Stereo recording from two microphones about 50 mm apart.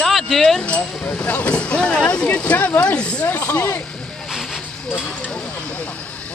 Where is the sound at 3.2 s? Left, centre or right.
Left.